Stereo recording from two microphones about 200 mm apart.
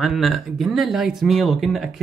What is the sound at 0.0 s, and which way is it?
Speech, centre (ahead or behind).